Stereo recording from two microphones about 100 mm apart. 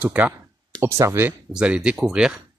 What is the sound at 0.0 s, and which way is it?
Speech, 15° right (ahead or behind).